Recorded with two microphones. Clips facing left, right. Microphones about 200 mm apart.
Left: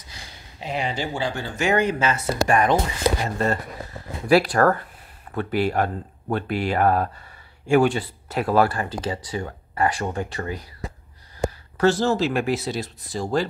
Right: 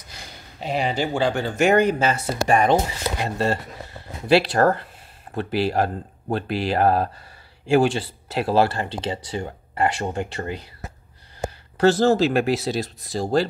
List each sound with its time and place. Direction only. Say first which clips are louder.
0.6 s speech: right 3 dB; 35° right (ahead or behind)
0.9 s speech: right 5 dB; 55° right (ahead or behind)
2.0 s speech: even; 35° right (ahead or behind)
11.8 s speech: right 3 dB; 35° right (ahead or behind)